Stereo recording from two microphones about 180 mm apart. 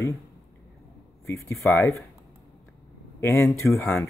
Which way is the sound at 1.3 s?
15° left (ahead or behind).